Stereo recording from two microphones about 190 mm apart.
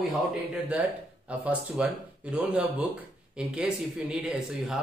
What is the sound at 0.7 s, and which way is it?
A man's voice, 5° right (ahead or behind).